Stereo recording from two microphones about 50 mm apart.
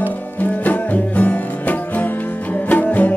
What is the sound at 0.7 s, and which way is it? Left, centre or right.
Music, left.